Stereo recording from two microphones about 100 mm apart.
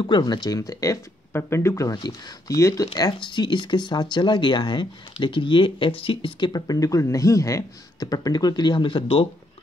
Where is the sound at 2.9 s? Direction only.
45° left (ahead or behind).